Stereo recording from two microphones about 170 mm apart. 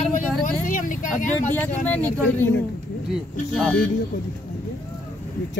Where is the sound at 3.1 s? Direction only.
5° right (ahead or behind).